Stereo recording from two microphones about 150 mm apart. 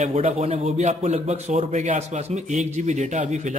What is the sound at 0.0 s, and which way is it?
A man's voice, 45° right (ahead or behind).